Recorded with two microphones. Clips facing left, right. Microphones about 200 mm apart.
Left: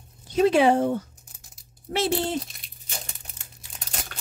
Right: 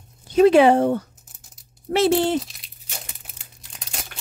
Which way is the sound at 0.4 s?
70° right (ahead or behind).